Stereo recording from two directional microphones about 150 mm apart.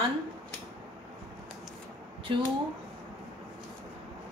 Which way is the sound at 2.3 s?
35° right (ahead or behind).